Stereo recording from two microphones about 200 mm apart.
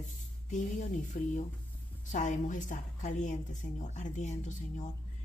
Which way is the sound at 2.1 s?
40° left (ahead or behind).